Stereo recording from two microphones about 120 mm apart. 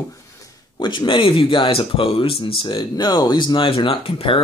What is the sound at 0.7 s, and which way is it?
Speech, 40° left (ahead or behind).